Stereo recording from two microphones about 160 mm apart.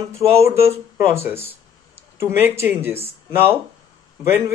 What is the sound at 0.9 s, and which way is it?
Speech, 15° right (ahead or behind).